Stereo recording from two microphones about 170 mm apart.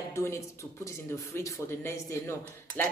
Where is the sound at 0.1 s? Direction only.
15° left (ahead or behind).